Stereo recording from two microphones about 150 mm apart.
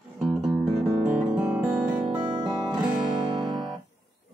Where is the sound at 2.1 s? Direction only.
35° right (ahead or behind).